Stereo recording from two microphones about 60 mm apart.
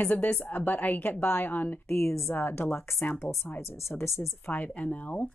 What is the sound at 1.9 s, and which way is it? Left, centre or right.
Speech, left.